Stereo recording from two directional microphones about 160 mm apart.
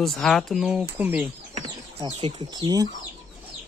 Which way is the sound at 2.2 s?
30° right (ahead or behind).